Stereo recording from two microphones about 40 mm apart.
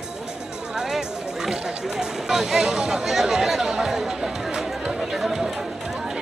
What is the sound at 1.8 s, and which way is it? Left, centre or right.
Speech, centre.